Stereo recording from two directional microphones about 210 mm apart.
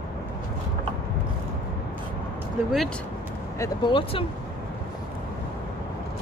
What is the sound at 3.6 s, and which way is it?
Speech, 25° left (ahead or behind).